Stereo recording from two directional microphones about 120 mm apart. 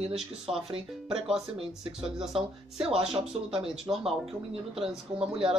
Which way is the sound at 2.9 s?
55° right (ahead or behind).